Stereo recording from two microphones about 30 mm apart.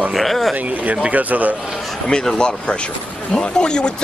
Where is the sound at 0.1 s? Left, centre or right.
Centre.